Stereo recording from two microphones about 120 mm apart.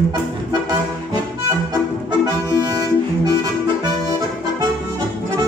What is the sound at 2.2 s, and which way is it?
Accordion, 35° right (ahead or behind).